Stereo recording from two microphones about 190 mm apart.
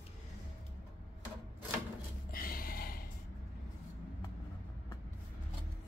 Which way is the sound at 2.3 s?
50° left (ahead or behind).